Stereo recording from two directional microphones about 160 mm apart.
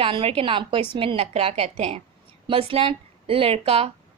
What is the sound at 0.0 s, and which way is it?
A woman's voice, 35° right (ahead or behind).